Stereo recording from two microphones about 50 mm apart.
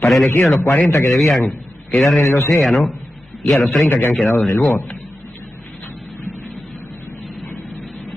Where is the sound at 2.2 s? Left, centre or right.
Left.